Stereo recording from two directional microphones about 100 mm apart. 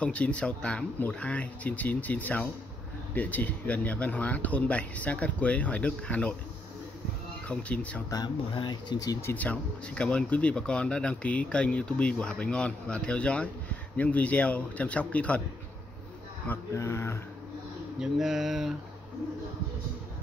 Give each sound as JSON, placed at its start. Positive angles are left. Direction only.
{"t": 0.0, "sound": "speech", "side_deg": 10}
{"t": 7.4, "sound": "speech", "side_deg": 15}
{"t": 8.1, "sound": "speech", "side_deg": 45}
{"t": 9.2, "sound": "speech", "side_deg": 15}
{"t": 16.4, "sound": "speech", "side_deg": 25}
{"t": 17.9, "sound": "speech", "side_deg": -5}